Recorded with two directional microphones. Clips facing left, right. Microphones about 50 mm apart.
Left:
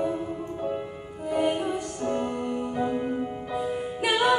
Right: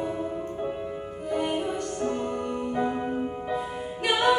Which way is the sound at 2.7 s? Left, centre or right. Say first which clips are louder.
Right 1 dB; centre.